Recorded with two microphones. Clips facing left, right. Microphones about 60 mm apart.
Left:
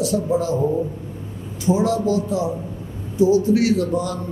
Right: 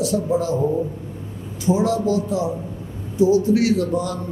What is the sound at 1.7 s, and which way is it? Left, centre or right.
A man's voice, centre.